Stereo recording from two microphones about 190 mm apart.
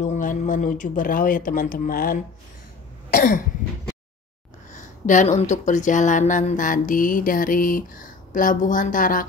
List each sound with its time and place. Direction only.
0.0 s speech: 40° left (ahead or behind)
3.1 s cough: 45° left (ahead or behind)
4.7 s speech: 40° left (ahead or behind)